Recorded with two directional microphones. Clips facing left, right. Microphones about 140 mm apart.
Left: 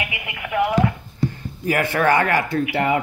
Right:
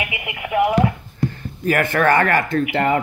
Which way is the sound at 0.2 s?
25° right (ahead or behind).